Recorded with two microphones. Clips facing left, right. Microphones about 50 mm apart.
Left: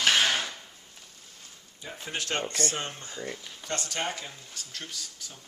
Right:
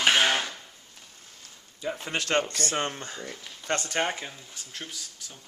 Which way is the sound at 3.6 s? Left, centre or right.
Right.